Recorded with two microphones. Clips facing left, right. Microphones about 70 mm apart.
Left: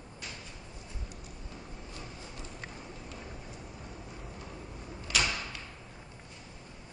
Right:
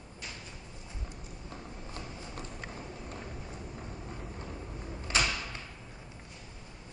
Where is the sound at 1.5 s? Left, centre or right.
Right.